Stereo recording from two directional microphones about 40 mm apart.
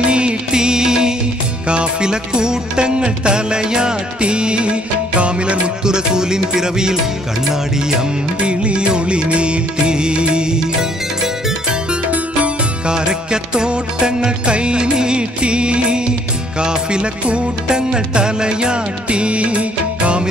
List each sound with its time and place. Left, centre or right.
0.1 s music: right
5.9 s music: centre
8.5 s music: right
12.8 s music: centre